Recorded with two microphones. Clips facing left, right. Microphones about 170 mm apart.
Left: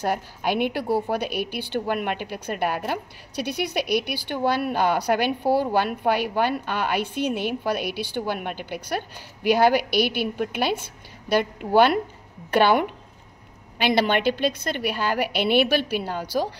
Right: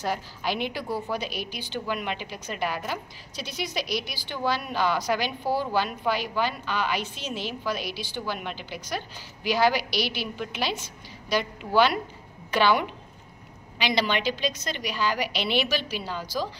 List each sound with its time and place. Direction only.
0.0 s a woman's voice: 55° left (ahead or behind)
0.8 s a woman's voice: 30° left (ahead or behind)
1.1 s a woman's voice: 60° left (ahead or behind)